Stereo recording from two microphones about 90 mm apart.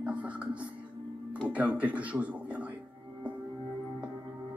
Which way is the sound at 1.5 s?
15° right (ahead or behind).